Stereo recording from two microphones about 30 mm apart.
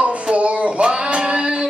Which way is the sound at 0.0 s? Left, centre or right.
Right.